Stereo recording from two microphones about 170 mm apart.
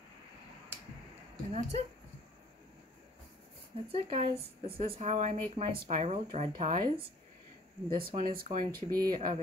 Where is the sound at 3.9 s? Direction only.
35° right (ahead or behind).